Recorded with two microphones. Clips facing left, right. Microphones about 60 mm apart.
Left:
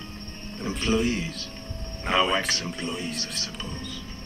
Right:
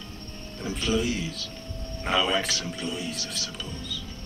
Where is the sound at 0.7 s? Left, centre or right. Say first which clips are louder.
Left 2 dB; left.